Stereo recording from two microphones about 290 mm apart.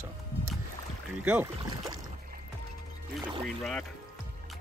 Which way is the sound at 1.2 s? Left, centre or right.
Centre.